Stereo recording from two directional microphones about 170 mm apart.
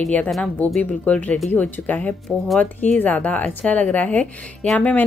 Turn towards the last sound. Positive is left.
turn(degrees=5)  # may be behind; listen again after turning